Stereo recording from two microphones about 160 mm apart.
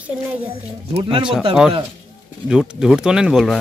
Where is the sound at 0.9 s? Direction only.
30° right (ahead or behind).